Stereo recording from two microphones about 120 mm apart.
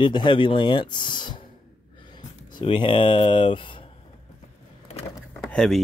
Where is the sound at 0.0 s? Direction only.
40° left (ahead or behind).